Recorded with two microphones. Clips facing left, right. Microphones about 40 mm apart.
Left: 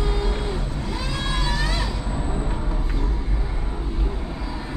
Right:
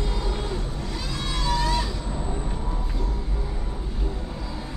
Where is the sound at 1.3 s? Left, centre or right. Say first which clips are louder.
Right 3 dB; centre.